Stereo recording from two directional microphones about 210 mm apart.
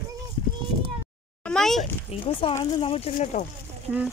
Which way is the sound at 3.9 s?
10° right (ahead or behind).